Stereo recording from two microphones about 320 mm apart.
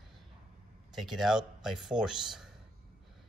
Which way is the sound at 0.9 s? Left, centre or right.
Centre.